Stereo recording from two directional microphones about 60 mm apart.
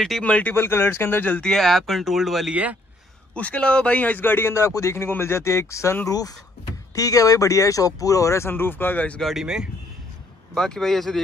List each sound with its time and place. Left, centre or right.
0.2 s speech: left
0.6 s speech: left
1.4 s speech: centre
2.5 s speech: right
3.3 s a man's voice: left
6.0 s speech: left
7.0 s speech: left
8.5 s speech: left
9.2 s speech: centre
10.5 s speech: centre